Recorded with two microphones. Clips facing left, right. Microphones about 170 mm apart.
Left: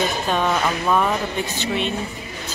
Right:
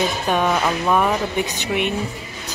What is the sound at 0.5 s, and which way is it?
Speech, 10° right (ahead or behind).